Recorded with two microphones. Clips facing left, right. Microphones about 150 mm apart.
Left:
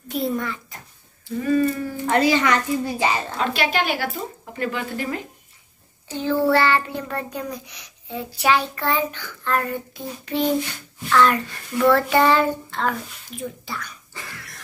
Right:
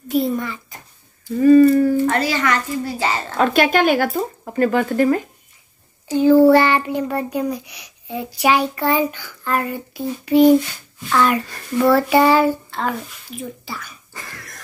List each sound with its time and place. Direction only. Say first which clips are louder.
0.1 s a child's voice: right 5 dB; centre (ahead or behind)
1.4 s speech: right 10 dB; 45° right (ahead or behind)
2.0 s a woman's voice: left 1 dB; 20° left (ahead or behind)
3.3 s speech: right 7 dB; 50° right (ahead or behind)
6.0 s child singing: right 11 dB; 10° right (ahead or behind)
6.4 s a child's voice: right 6 dB; 15° right (ahead or behind)
14.1 s cough: right 3 dB; 45° right (ahead or behind)